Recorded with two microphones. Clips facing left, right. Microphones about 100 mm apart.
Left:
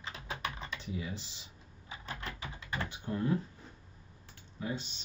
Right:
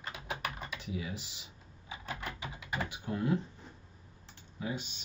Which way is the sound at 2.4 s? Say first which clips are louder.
Right 1 dB; 15° right (ahead or behind).